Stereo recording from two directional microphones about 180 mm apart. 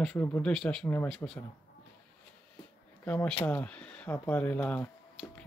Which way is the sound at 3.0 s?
5° left (ahead or behind).